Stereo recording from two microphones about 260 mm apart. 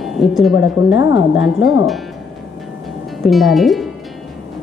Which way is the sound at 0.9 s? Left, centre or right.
Left.